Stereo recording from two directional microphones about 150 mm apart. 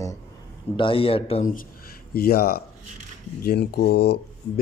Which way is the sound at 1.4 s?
60° left (ahead or behind).